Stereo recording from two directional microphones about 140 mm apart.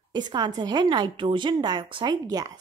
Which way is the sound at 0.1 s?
30° right (ahead or behind).